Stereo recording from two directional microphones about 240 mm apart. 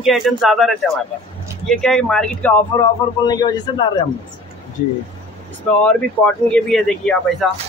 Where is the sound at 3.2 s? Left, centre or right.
Centre.